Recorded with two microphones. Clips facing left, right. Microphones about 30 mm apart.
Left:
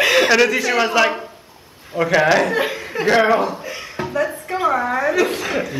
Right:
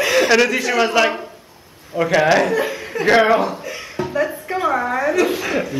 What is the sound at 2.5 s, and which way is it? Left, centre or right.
Speech, left.